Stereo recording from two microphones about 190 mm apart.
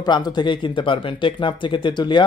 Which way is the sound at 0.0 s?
20° left (ahead or behind).